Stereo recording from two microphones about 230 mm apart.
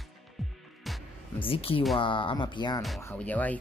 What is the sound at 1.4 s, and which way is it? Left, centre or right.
Speech, left.